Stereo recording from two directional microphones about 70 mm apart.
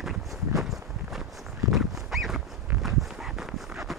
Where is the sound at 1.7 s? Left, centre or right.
Centre.